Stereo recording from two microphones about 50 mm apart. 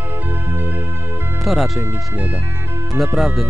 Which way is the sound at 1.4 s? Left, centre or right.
Centre.